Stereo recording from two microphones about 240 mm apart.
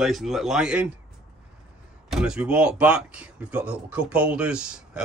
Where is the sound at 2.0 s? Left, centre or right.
Centre.